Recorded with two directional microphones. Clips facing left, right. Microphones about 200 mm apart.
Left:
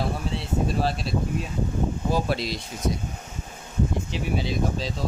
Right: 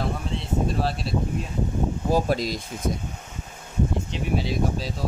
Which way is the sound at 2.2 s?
45° right (ahead or behind).